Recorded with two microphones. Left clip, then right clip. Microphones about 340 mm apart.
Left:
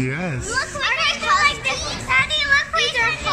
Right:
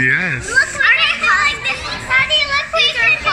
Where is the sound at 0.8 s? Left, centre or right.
Centre.